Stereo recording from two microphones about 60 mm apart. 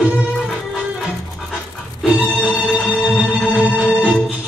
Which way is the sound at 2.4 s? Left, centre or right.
Centre.